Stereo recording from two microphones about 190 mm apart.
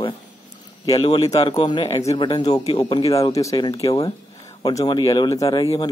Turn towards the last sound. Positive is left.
turn(degrees=25)  # may be behind; listen again after turning